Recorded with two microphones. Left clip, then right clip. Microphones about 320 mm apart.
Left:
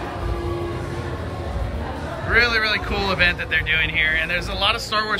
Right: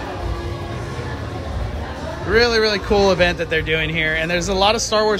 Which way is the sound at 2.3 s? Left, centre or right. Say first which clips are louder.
Right 2 dB; centre.